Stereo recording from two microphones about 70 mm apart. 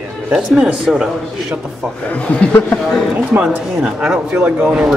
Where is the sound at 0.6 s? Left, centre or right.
Centre.